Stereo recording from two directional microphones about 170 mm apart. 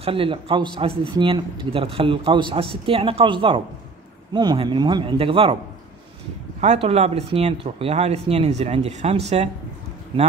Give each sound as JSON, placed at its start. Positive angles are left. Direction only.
{"t": 0.0, "sound": "a man's voice", "side_deg": -30}
{"t": 6.6, "sound": "speech", "side_deg": -40}